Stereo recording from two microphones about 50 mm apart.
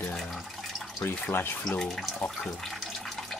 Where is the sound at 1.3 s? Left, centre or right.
Left.